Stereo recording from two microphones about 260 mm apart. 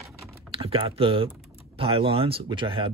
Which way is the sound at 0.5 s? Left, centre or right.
Right.